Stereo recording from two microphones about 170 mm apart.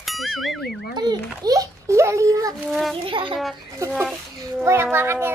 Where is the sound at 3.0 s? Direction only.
30° right (ahead or behind).